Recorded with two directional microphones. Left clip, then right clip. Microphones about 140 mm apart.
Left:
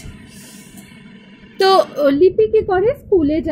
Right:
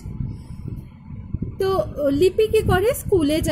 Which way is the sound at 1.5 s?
5° right (ahead or behind).